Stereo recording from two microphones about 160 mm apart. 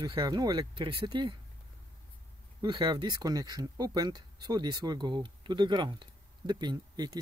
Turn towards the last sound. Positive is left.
turn(degrees=-25)  # may be behind; listen again after turning